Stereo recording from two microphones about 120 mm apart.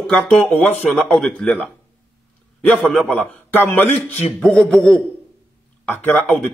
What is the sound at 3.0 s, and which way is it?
Speech, 15° left (ahead or behind).